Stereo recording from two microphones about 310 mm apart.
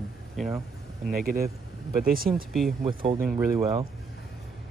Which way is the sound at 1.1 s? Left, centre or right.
Right.